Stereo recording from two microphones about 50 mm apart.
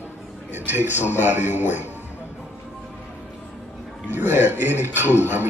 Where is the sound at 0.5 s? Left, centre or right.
Right.